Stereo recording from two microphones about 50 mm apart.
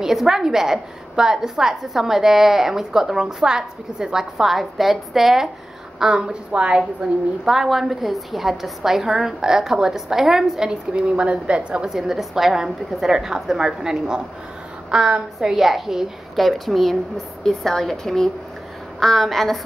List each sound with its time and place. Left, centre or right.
0.0 s a woman's voice: centre
10.7 s a woman's voice: centre
11.9 s a woman's voice: centre